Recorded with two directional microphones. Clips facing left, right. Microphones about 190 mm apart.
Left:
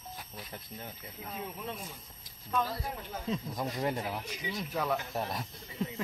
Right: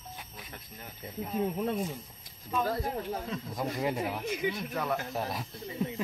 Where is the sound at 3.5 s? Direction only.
5° right (ahead or behind).